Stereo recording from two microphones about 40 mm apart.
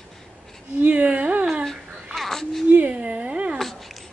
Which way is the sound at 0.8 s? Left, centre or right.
Right.